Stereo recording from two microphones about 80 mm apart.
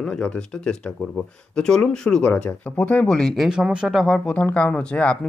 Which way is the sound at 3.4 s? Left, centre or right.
Centre.